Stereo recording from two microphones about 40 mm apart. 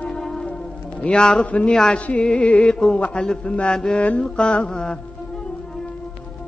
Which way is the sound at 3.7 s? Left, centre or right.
Left.